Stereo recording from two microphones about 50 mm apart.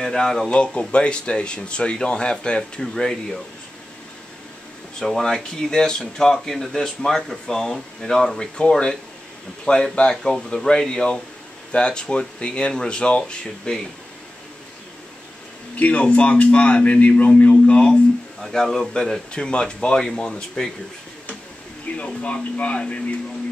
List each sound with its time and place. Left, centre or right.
0.0 s speech: centre
0.5 s speech: left
4.9 s speech: centre
9.9 s speech: centre
15.7 s speech: left
18.4 s speech: centre
21.9 s speech: left